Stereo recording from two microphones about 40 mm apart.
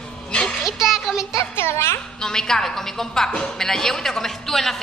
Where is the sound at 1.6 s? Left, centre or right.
Left.